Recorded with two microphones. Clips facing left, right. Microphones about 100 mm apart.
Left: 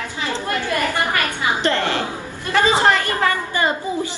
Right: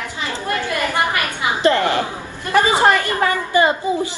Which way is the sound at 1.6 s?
15° right (ahead or behind).